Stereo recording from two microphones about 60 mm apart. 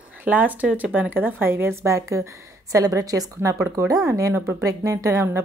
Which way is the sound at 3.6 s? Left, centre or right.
Right.